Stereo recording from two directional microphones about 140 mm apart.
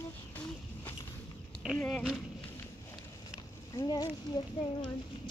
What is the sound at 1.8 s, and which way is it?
Speech, 5° left (ahead or behind).